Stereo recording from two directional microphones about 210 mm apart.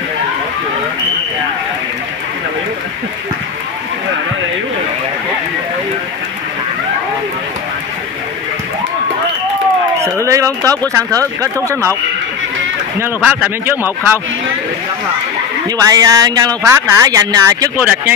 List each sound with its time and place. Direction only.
10.2 s a sound: 15° right (ahead or behind)
10.6 s speech: 10° left (ahead or behind)
11.4 s speech: 15° right (ahead or behind)
13.0 s speech: 10° right (ahead or behind)
15.9 s speech: 15° right (ahead or behind)